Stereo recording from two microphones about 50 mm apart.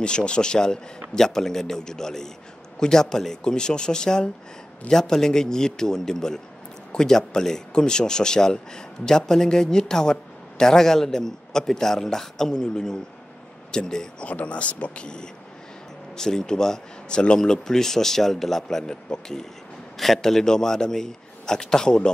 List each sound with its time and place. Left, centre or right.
0.0 s speech: centre
14.2 s speech: left